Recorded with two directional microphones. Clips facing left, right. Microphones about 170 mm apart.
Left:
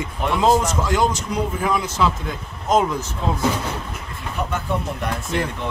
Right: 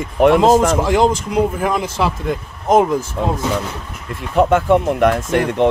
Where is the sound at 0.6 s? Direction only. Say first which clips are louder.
Right 6 dB; 55° right (ahead or behind).